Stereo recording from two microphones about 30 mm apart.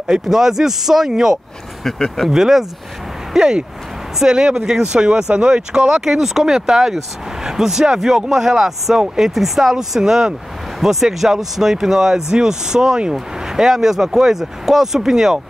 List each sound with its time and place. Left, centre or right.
0.1 s speech: centre
1.9 s speech: centre
2.3 s speech: centre
4.2 s speech: right
4.9 s speech: right
9.3 s speech: centre